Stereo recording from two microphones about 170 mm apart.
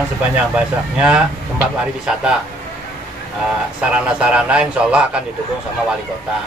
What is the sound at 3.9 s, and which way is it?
Speech, 5° right (ahead or behind).